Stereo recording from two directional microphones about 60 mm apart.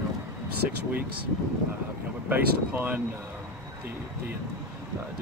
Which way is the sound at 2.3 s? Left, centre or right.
Right.